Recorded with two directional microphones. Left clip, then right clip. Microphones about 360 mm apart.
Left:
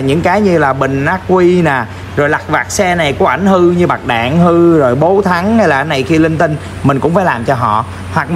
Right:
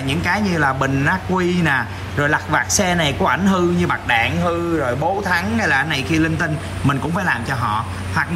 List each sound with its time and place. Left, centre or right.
0.0 s speech: centre
4.5 s speech: left
5.2 s a man's voice: centre